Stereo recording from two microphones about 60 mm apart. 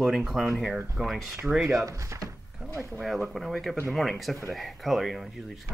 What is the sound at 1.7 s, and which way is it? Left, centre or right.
Speech, right.